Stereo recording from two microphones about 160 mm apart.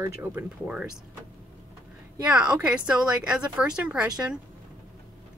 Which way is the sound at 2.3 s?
5° right (ahead or behind).